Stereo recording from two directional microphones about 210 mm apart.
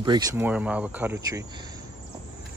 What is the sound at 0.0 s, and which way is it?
Speech, 20° right (ahead or behind).